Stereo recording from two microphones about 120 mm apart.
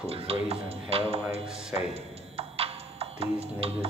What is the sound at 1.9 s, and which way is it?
Music, 55° right (ahead or behind).